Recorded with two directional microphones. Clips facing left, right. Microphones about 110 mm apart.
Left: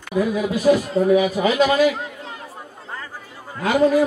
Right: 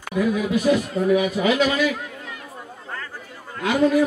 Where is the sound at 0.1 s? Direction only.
40° left (ahead or behind).